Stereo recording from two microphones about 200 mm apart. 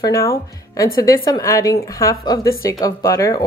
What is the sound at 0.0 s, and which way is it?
A woman's voice, 15° left (ahead or behind).